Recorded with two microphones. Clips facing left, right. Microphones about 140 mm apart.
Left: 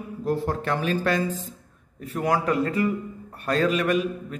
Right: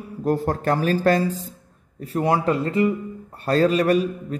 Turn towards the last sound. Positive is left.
turn(degrees=-35)  # may be behind; listen again after turning